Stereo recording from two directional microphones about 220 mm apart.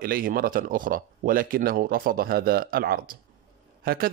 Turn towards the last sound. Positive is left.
turn(degrees=-40)  # may be behind; listen again after turning